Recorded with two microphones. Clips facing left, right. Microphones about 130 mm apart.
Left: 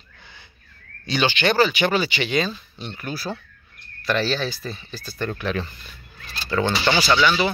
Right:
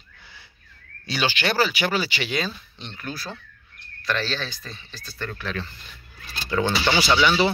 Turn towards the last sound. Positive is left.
turn(degrees=-10)  # may be behind; listen again after turning